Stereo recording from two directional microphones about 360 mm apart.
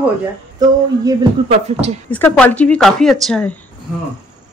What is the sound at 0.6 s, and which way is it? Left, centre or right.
A woman's voice, centre.